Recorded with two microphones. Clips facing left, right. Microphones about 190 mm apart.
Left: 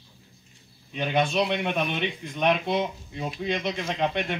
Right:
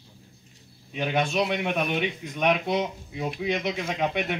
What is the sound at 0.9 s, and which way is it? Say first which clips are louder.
A man's voice: left 1 dB; 10° right (ahead or behind).